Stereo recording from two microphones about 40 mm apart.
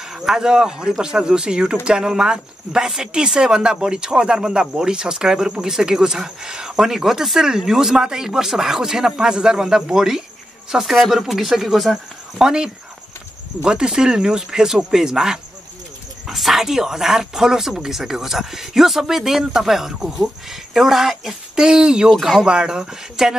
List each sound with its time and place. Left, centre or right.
0.0 s speech: centre
12.4 s speech: centre
16.3 s speech: centre
22.2 s speech: centre
22.5 s speech: centre